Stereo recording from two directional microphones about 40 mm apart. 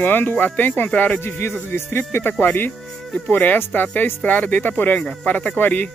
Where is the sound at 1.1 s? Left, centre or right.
Left.